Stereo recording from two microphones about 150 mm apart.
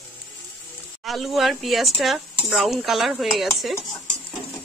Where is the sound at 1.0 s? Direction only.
Centre (ahead or behind).